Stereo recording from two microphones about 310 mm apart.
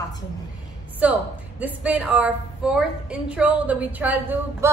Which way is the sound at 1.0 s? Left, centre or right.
Centre.